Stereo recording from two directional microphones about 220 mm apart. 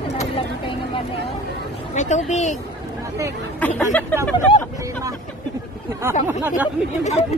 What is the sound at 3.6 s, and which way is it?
Speech, 5° left (ahead or behind).